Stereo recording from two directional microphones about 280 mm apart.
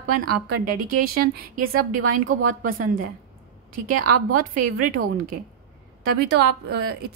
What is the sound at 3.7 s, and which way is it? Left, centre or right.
A woman's voice, right.